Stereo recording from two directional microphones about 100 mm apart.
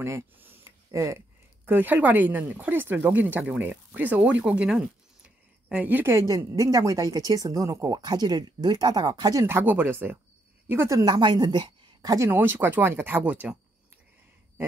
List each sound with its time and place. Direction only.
0.0 s speech: 25° right (ahead or behind)
6.1 s a woman's voice: 35° right (ahead or behind)
9.5 s speech: 20° right (ahead or behind)
11.1 s a woman's voice: 45° right (ahead or behind)
12.2 s speech: 20° right (ahead or behind)